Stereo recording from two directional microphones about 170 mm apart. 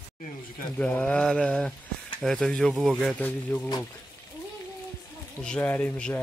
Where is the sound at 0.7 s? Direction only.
10° left (ahead or behind).